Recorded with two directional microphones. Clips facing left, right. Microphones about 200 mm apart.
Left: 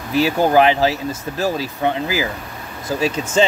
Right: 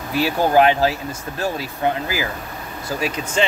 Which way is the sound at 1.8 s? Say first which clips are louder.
Even; 25° left (ahead or behind).